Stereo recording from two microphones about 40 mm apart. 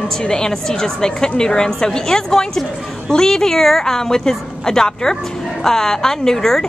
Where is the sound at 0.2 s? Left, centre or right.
Centre.